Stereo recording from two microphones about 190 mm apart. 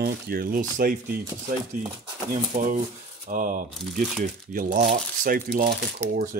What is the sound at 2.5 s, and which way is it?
Speech, 40° right (ahead or behind).